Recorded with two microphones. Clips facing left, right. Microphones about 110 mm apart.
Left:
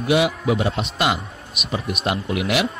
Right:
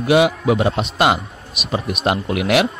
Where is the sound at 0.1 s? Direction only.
75° right (ahead or behind).